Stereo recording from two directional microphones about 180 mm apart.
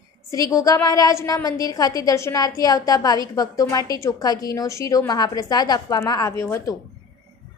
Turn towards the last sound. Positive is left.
turn(degrees=15)  # may be behind; listen again after turning